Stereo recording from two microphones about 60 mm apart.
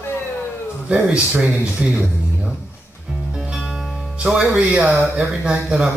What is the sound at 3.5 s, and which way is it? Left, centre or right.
Music, centre.